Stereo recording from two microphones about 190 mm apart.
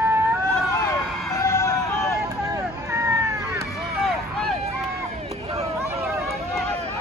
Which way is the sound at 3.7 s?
Centre (ahead or behind).